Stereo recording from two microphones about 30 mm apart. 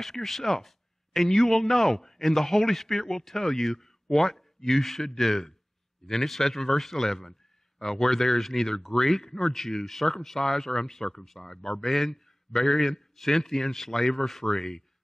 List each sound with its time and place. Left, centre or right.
0.0 s speech: centre
10.0 s speech: centre